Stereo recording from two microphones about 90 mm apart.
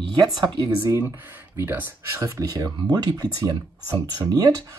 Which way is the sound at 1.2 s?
20° right (ahead or behind).